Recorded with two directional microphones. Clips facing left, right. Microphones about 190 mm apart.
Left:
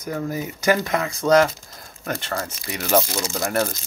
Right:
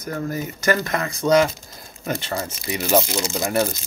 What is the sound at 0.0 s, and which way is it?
Speech, 10° left (ahead or behind).